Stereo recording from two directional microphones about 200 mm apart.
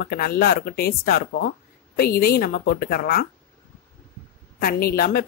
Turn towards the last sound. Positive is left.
turn(degrees=50)  # may be behind; listen again after turning